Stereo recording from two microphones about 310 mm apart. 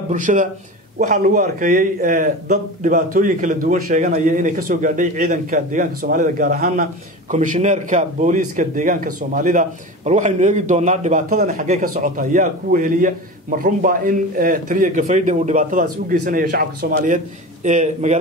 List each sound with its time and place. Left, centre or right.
0.1 s a man's voice: right